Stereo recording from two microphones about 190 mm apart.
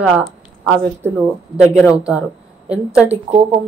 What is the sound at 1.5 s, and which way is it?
Speech, 5° right (ahead or behind).